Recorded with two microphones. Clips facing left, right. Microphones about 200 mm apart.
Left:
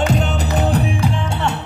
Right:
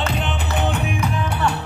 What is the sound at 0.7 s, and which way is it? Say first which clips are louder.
Music: left 4 dB; 35° left (ahead or behind).